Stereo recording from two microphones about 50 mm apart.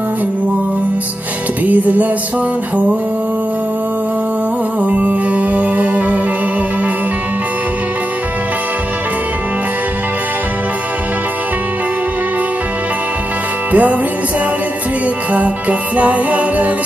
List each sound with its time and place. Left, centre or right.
1.7 s music: right
4.8 s music: right
13.7 s music: right
16.0 s music: right